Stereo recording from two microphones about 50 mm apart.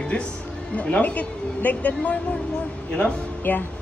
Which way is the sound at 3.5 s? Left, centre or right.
Left.